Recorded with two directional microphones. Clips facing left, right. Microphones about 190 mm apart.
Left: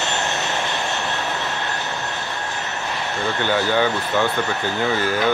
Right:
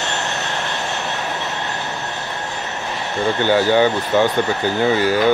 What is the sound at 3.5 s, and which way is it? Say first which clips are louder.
Speech: right 5 dB; 25° right (ahead or behind).